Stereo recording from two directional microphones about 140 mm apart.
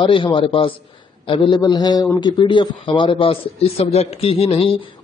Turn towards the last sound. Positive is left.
turn(degrees=45)  # may be behind; listen again after turning